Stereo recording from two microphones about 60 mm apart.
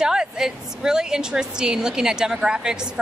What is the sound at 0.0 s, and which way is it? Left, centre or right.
A woman's voice, centre.